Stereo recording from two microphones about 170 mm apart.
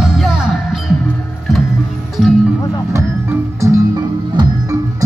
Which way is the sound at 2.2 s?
Centre (ahead or behind).